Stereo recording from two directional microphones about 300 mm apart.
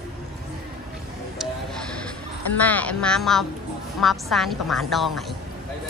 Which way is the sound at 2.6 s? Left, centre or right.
Centre.